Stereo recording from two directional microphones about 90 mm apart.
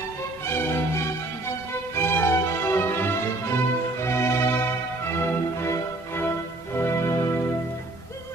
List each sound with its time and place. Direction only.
0.5 s music: 25° left (ahead or behind)